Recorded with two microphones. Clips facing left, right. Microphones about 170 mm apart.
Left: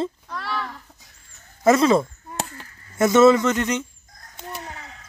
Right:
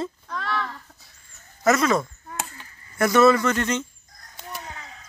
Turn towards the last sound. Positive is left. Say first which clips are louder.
# left 2 dB
turn(degrees=15)  # may be behind; listen again after turning